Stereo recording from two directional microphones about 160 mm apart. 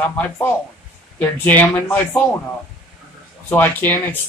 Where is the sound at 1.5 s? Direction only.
10° left (ahead or behind).